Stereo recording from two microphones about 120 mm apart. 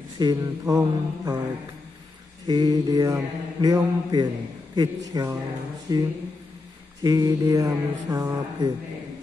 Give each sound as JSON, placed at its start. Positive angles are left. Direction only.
{"t": 0.2, "sound": "speech", "side_deg": -35}
{"t": 2.4, "sound": "speech", "side_deg": -35}